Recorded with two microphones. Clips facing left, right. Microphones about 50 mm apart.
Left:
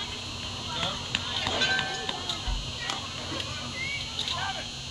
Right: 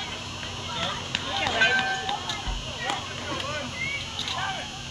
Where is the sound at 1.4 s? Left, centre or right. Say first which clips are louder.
Right 6 dB; right.